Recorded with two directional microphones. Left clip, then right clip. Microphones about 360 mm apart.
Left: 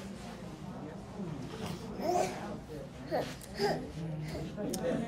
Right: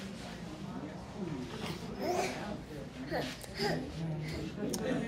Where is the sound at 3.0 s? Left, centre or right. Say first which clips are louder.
Left 2 dB; centre.